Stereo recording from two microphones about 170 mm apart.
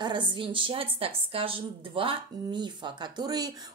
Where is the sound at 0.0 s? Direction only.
30° right (ahead or behind).